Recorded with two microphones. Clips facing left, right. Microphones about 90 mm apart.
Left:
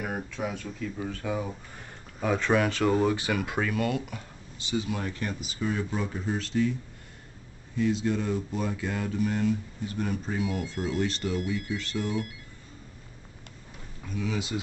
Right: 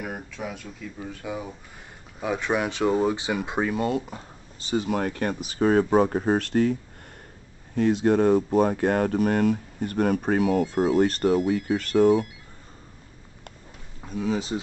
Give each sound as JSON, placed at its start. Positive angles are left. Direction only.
{"t": 0.0, "sound": "speech", "side_deg": 0}
{"t": 1.2, "sound": "speech", "side_deg": -15}
{"t": 14.0, "sound": "speech", "side_deg": -35}